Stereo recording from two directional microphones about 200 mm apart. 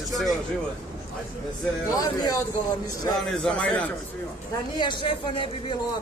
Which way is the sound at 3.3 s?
5° left (ahead or behind).